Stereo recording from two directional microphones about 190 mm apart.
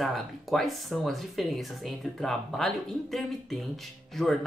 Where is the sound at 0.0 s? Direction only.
Centre (ahead or behind).